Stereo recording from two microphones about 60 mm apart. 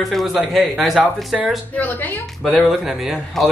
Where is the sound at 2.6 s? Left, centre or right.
Centre.